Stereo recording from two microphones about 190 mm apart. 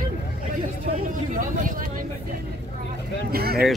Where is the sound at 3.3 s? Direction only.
55° right (ahead or behind).